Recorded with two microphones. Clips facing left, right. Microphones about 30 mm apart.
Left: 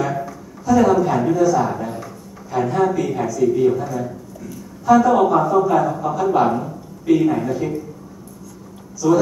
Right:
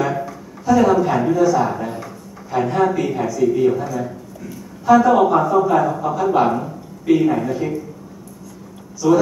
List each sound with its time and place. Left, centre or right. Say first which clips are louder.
0.0 s a sound: right 1 dB; right
1.3 s a man's voice: right 1 dB; right
9.0 s a man's voice: right 1 dB; centre